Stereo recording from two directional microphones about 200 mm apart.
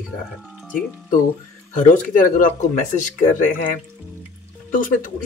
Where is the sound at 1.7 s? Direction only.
40° left (ahead or behind).